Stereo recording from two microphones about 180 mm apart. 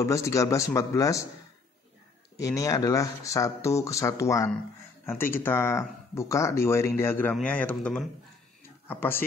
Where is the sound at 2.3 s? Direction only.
20° left (ahead or behind).